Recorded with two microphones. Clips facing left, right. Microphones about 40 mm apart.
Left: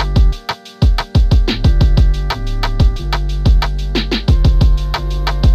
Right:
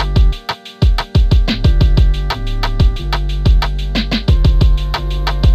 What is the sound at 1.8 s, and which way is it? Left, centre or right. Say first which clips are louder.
Music: even; right.